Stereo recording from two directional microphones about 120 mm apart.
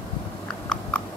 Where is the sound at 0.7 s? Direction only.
10° left (ahead or behind).